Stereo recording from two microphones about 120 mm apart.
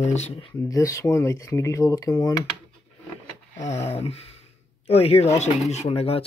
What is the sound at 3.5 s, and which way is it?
Speech, 65° left (ahead or behind).